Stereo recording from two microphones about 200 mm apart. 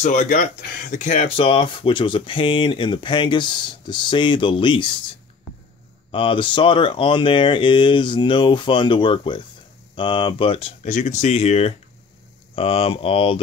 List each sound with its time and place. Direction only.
0.0 s speech: 40° left (ahead or behind)
6.1 s speech: 25° left (ahead or behind)